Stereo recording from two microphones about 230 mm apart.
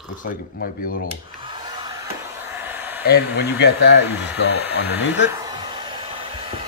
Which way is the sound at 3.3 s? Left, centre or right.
Left.